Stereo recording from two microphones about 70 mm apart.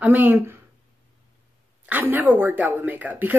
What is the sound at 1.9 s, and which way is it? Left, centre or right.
A woman's voice, right.